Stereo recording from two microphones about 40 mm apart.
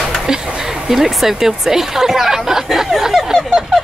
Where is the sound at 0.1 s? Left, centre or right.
Centre.